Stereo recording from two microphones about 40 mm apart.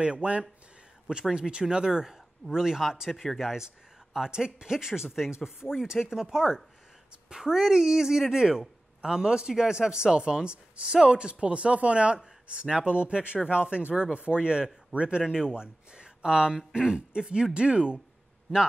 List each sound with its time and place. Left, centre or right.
0.0 s speech: right